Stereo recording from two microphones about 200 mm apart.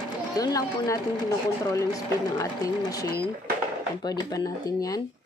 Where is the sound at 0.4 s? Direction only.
15° left (ahead or behind).